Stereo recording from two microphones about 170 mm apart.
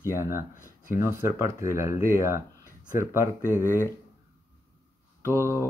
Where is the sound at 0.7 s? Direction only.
55° left (ahead or behind).